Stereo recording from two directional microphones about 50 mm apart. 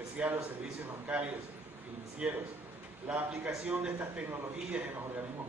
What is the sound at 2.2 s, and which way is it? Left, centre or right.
A man's voice, centre.